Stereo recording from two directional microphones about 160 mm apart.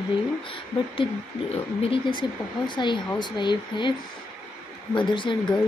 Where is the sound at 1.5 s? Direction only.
35° left (ahead or behind).